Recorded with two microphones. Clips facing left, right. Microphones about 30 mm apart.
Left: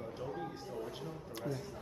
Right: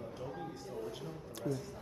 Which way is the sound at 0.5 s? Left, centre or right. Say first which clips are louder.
Even; left.